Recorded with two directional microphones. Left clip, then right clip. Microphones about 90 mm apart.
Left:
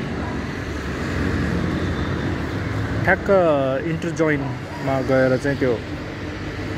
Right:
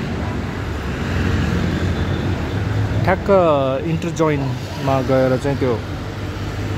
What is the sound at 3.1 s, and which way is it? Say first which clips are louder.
Speech: right 2 dB; 20° right (ahead or behind).